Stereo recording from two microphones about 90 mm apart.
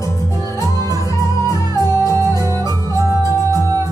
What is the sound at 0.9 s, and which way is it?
Music, 40° right (ahead or behind).